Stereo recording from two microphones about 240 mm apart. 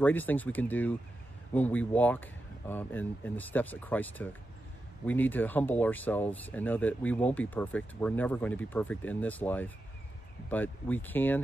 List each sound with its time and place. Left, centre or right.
0.0 s speech: centre